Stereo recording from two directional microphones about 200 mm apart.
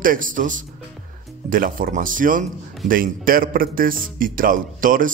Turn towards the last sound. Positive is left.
turn(degrees=-45)  # may be behind; listen again after turning